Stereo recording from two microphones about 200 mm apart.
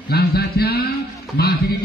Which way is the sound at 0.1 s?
50° left (ahead or behind).